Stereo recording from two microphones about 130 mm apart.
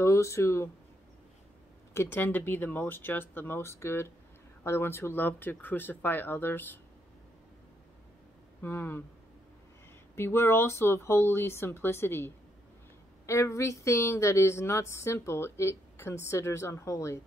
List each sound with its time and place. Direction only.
0.0 s speech: 20° left (ahead or behind)
2.0 s speech: 15° left (ahead or behind)
8.5 s speech: 20° left (ahead or behind)
10.1 s speech: 20° left (ahead or behind)
13.3 s speech: 20° left (ahead or behind)